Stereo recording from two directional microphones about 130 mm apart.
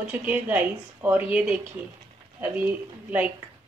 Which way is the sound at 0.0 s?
10° right (ahead or behind).